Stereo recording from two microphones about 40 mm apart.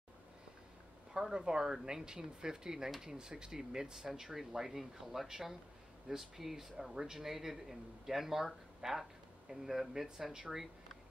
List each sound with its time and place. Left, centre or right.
1.1 s speech: centre